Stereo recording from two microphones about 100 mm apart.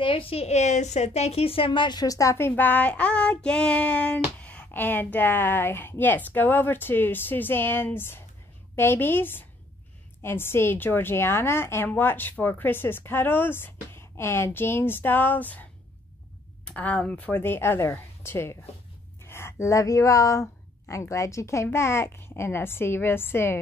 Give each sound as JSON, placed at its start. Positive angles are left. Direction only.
{"t": 0.0, "sound": "a woman's voice", "side_deg": 65}
{"t": 16.6, "sound": "a woman's voice", "side_deg": 15}